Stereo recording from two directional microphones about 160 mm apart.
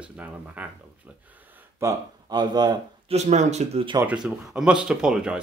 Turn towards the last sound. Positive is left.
turn(degrees=-5)  # may be behind; listen again after turning